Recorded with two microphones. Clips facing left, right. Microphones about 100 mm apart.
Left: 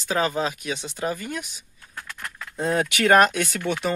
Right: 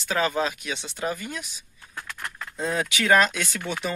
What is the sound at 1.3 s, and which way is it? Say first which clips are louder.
Speech: left 4 dB; 50° left (ahead or behind).